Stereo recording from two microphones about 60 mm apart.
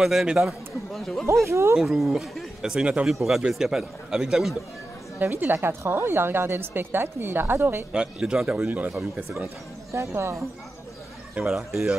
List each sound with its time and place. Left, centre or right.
0.0 s a man's voice: centre
0.5 s a man's voice: centre
1.4 s speech: right
1.8 s a man's voice: centre
3.1 s a man's voice: centre
5.2 s a woman's voice: right
7.9 s a man's voice: centre
8.5 s speech: right
9.9 s speech: right
11.3 s a man's voice: centre